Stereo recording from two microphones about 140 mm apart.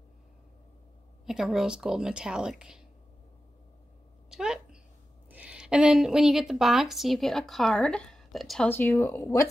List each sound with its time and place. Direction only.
1.2 s speech: 5° right (ahead or behind)
4.3 s a sound: 5° right (ahead or behind)
5.3 s a woman's voice: 10° right (ahead or behind)
8.6 s speech: 15° left (ahead or behind)